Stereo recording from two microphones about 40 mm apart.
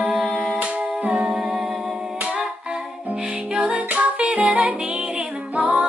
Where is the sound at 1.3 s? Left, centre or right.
Centre.